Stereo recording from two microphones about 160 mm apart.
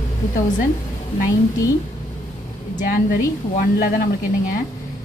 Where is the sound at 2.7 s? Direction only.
65° left (ahead or behind).